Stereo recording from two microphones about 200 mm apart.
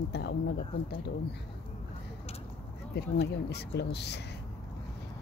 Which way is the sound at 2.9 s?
55° left (ahead or behind).